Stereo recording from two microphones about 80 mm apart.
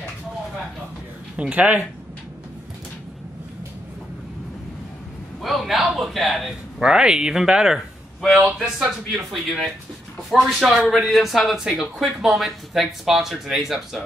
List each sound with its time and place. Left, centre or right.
1.3 s speech: centre
5.4 s speech: centre
6.8 s speech: centre